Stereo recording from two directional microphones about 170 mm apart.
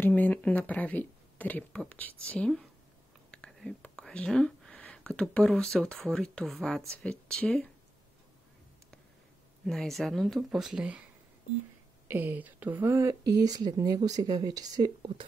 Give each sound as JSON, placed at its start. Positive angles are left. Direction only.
{"t": 0.0, "sound": "speech", "side_deg": 10}
{"t": 9.7, "sound": "speech", "side_deg": 0}
{"t": 12.1, "sound": "speech", "side_deg": -10}